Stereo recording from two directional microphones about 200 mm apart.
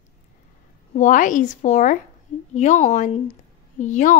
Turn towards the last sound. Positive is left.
turn(degrees=40)  # may be behind; listen again after turning